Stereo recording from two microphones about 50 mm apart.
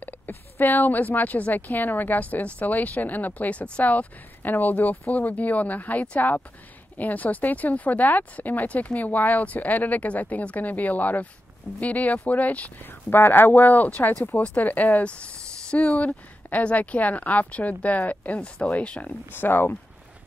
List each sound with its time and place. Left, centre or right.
0.3 s speech: left
13.1 s speech: left